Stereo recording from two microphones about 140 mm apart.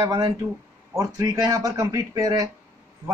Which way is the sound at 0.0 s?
30° right (ahead or behind).